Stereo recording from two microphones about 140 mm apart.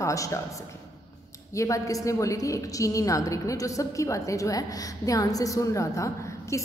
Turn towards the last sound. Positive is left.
turn(degrees=20)  # may be behind; listen again after turning